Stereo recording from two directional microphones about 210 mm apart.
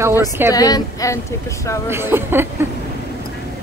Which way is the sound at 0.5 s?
20° left (ahead or behind).